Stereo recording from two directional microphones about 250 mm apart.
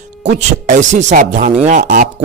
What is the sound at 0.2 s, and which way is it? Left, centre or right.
A man's voice, right.